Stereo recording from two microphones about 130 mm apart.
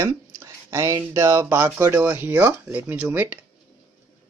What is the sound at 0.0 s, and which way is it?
Speech, 25° right (ahead or behind).